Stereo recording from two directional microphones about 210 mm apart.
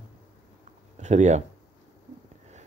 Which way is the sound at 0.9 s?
35° right (ahead or behind).